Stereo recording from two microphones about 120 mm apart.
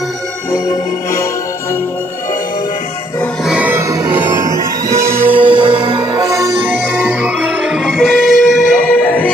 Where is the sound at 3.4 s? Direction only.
10° right (ahead or behind).